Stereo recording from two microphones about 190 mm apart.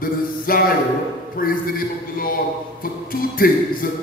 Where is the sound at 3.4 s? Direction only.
50° left (ahead or behind).